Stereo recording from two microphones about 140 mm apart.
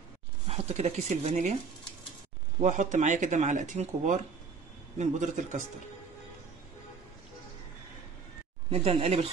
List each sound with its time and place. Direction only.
0.5 s speech: 50° right (ahead or behind)
2.6 s speech: 60° right (ahead or behind)
8.6 s speech: 45° right (ahead or behind)